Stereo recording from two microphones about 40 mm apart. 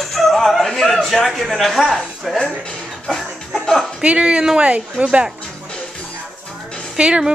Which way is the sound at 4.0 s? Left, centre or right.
Right.